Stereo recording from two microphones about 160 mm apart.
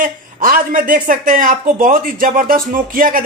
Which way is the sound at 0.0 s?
60° right (ahead or behind).